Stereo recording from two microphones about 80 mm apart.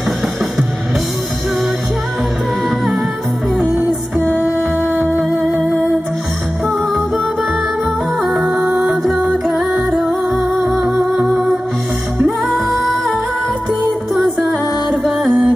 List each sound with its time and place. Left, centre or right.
4.2 s music: left
5.1 s music: right
8.2 s music: centre
10.0 s music: centre